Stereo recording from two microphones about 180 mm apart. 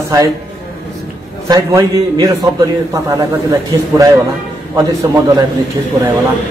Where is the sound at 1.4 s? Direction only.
20° right (ahead or behind).